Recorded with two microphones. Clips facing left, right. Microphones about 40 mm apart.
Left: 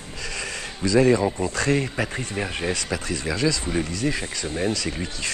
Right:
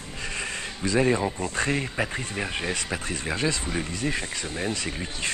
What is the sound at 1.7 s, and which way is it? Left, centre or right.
Speech, centre.